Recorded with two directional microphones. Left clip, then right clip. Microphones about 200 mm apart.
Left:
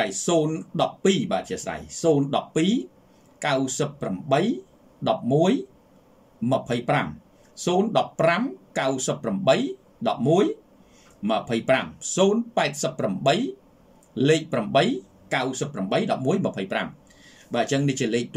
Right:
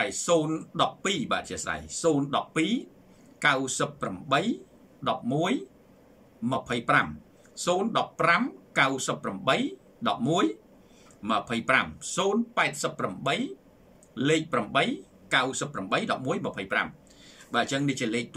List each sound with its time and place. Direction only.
0.0 s speech: 15° left (ahead or behind)